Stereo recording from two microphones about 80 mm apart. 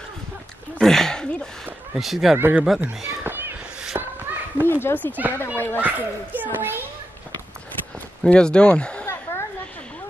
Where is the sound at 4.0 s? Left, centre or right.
Right.